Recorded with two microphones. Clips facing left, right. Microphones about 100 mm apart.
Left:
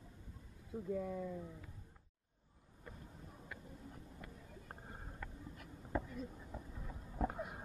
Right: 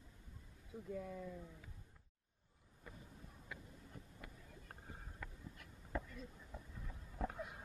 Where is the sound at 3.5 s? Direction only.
Centre (ahead or behind).